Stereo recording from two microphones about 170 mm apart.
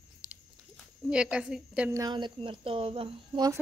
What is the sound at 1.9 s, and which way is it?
Speech, 25° right (ahead or behind).